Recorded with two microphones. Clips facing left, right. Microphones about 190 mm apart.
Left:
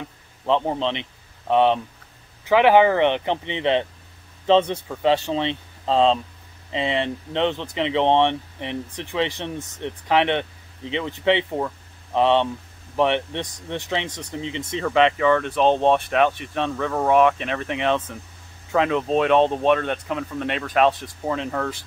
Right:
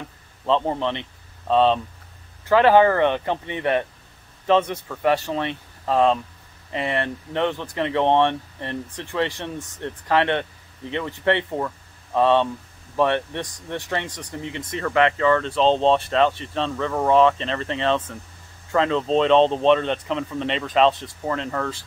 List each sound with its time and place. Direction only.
0.5 s speech: 15° left (ahead or behind)
16.8 s speech: centre (ahead or behind)
17.1 s speech: 10° left (ahead or behind)